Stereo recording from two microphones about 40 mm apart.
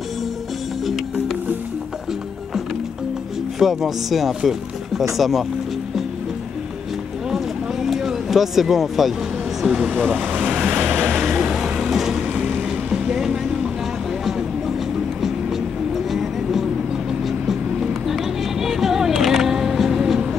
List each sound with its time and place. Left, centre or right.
3.5 s speech: centre
7.3 s a sound: centre
9.6 s speech: centre
10.4 s vehicle: right
10.8 s vehicle: right
11.1 s vehicle: centre
12.9 s music: centre
16.1 s vehicle: centre
18.0 s music: centre